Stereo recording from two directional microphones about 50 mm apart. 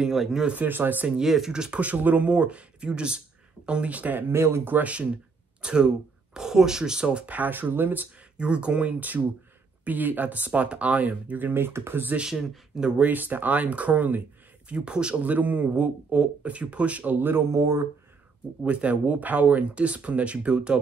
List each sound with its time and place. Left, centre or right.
0.0 s speech: centre
0.7 s speech: right
1.0 s speech: centre
1.8 s speech: right
4.3 s speech: right
4.6 s speech: right
4.9 s a sound: right
6.3 s speech: centre; by 8.1 s right
8.4 s speech: right
12.3 s speech: centre
13.0 s speech: right
14.7 s speech: right
15.2 s speech: right
18.7 s speech: right